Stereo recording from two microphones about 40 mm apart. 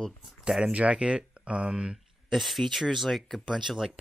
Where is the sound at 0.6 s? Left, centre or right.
Right.